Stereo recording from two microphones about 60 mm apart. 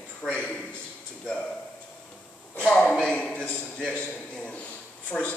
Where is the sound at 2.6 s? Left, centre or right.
Centre.